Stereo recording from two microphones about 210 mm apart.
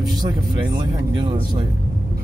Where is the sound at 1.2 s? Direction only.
20° right (ahead or behind).